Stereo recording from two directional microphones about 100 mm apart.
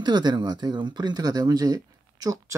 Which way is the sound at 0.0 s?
45° right (ahead or behind).